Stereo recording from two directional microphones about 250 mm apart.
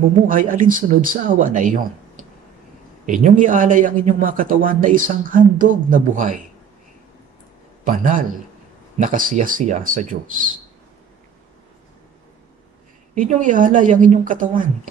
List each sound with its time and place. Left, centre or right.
0.3 s speech: right
3.1 s speech: right
7.8 s speech: right
13.1 s speech: right